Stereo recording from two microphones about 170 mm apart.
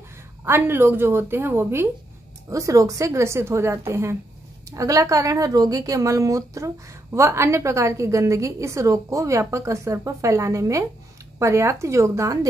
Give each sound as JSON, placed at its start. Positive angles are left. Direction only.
{"t": 0.5, "sound": "speech", "side_deg": -15}